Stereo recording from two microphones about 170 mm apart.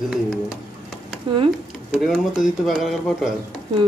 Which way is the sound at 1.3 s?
30° right (ahead or behind).